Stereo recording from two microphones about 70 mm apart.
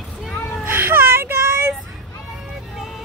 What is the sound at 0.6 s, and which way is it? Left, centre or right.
Baby cry, right.